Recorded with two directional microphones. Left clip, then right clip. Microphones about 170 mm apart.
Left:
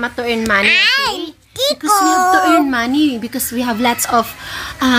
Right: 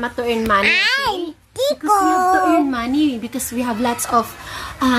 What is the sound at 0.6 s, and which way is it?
Speech, 30° right (ahead or behind).